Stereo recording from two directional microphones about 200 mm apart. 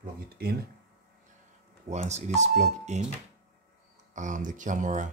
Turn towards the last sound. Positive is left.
turn(degrees=-40)  # may be behind; listen again after turning